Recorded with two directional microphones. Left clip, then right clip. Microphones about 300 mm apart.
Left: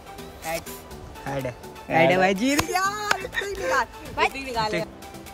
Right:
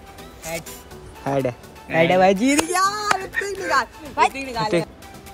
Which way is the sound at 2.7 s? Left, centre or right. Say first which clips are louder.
Right 4 dB; right.